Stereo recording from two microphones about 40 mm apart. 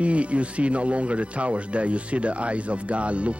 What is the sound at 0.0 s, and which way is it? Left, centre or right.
Speech, right.